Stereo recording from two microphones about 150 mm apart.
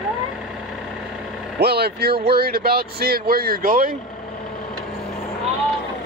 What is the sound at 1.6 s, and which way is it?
Speech, 90° right.